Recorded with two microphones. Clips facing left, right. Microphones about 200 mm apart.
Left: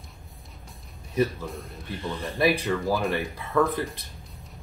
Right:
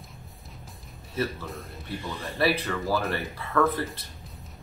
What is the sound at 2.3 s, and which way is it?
Speech, 15° left (ahead or behind).